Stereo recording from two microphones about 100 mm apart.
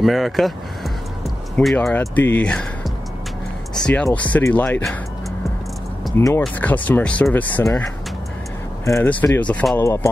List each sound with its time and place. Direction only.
0.0 s speech: centre (ahead or behind)
4.4 s speech: 25° left (ahead or behind)
4.6 s speech: 10° left (ahead or behind)
6.1 s speech: 25° left (ahead or behind)
6.6 s speech: 15° left (ahead or behind)
9.0 s speech: 15° left (ahead or behind)